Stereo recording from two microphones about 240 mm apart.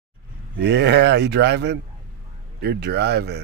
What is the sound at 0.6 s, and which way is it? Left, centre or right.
Speech, right.